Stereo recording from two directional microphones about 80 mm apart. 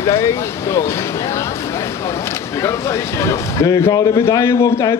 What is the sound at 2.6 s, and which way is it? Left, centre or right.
Speech, left.